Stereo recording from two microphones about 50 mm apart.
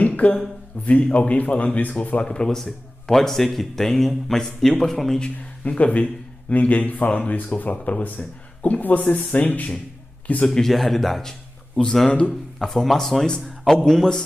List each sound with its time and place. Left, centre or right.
0.0 s a sound: left
0.8 s a man's voice: left
2.2 s speech: centre
5.2 s a man's voice: left
10.5 s speech: centre
12.3 s speech: centre